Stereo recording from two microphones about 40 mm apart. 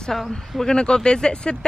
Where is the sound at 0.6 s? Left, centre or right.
Centre.